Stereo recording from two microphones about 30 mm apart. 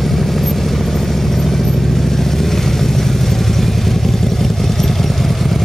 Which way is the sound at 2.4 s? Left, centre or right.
Centre.